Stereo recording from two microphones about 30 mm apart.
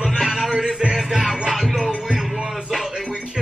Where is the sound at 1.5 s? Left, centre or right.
Centre.